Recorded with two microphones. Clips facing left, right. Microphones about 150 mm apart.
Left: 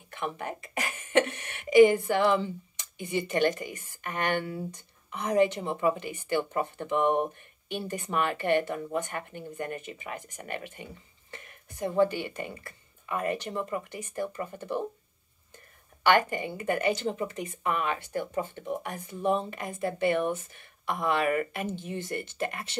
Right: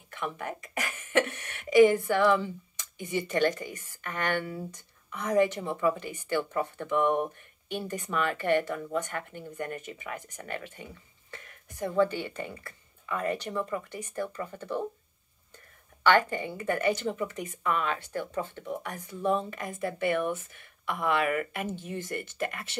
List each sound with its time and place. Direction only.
0.1 s speech: 25° left (ahead or behind)
16.1 s speech: 15° left (ahead or behind); by 22.7 s 30° left (ahead or behind)